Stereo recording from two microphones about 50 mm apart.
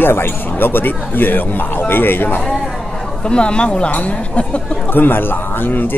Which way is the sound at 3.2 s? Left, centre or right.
Centre.